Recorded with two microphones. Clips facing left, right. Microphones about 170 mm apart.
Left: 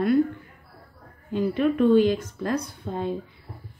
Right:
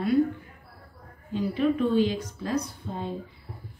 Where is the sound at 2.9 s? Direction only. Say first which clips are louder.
Left 4 dB; 65° left (ahead or behind).